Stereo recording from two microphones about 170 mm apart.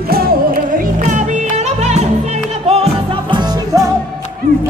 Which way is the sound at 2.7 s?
35° right (ahead or behind).